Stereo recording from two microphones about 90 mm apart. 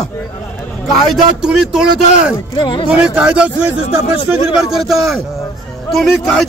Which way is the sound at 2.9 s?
10° right (ahead or behind).